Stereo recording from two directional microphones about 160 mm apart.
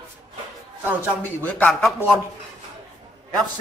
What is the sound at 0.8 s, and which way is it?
Speech, 10° right (ahead or behind).